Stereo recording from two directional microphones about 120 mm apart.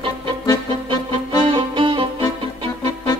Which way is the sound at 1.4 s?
45° right (ahead or behind).